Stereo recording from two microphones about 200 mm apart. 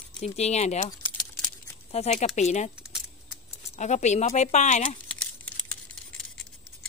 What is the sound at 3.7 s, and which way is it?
Speech, 35° left (ahead or behind).